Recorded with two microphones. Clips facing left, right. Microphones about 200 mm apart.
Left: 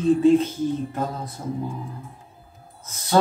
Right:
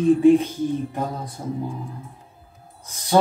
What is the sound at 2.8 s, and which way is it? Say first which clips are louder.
Music: right 2 dB; 15° right (ahead or behind).